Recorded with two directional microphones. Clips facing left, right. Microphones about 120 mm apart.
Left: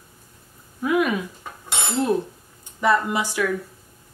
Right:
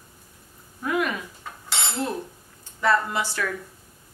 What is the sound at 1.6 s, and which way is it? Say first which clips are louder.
Dishes: left 5 dB; 20° left (ahead or behind).